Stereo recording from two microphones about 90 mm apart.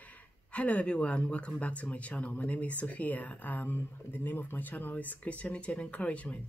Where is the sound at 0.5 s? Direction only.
15° left (ahead or behind).